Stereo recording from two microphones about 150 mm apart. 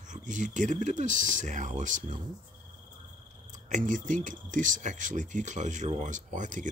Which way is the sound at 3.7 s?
55° right (ahead or behind).